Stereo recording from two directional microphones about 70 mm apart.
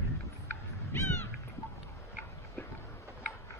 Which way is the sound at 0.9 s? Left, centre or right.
Left.